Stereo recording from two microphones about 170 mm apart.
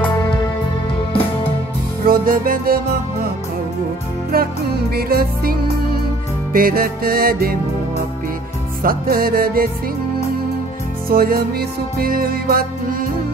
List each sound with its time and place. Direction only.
2.0 s music: 60° right (ahead or behind)
4.3 s music: 60° right (ahead or behind)
8.8 s music: 60° right (ahead or behind)
11.1 s music: 60° right (ahead or behind)